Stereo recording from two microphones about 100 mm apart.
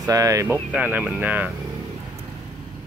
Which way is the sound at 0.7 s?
15° right (ahead or behind).